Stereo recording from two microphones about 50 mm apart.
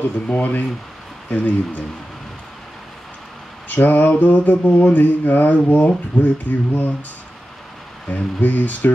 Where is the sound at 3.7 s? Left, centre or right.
Left.